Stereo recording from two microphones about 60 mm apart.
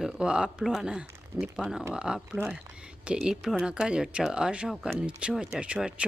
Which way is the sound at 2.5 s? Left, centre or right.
Centre.